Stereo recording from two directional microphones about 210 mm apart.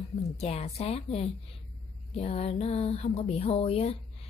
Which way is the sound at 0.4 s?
30° left (ahead or behind).